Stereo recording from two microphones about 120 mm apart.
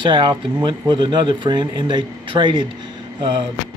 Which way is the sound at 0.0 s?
40° right (ahead or behind).